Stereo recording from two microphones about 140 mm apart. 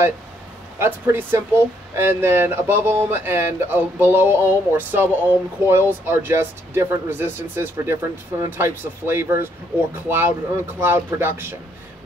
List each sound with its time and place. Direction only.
0.7 s speech: 15° right (ahead or behind)